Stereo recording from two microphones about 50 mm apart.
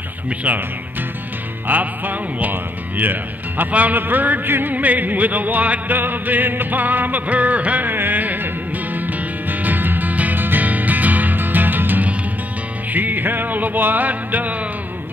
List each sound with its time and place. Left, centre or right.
0.5 s music: right
1.7 s music: right